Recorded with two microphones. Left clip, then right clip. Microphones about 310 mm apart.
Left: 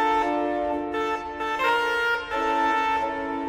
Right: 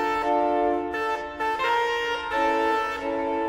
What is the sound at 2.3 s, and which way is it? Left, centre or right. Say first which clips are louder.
Music: even; centre.